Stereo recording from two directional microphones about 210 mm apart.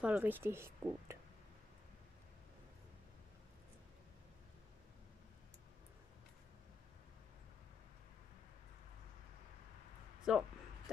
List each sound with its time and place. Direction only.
0.0 s speech: 5° right (ahead or behind)
10.3 s speech: 5° right (ahead or behind)